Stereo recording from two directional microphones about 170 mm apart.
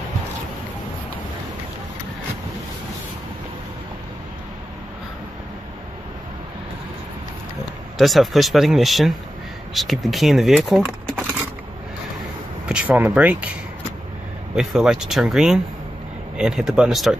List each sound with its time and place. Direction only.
8.0 s speech: centre (ahead or behind)
12.6 s speech: 10° right (ahead or behind)
14.5 s speech: 5° right (ahead or behind)